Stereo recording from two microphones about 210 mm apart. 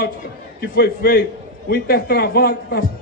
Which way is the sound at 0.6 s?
50° left (ahead or behind).